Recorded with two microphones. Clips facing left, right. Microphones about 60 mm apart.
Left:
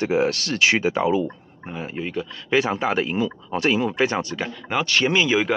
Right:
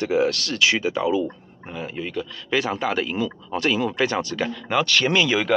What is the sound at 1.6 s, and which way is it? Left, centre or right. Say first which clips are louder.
Speech: left 1 dB; centre.